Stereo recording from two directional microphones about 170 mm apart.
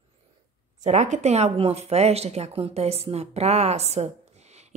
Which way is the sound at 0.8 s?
45° right (ahead or behind).